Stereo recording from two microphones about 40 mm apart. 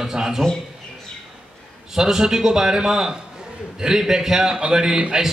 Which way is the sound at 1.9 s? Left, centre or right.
Centre.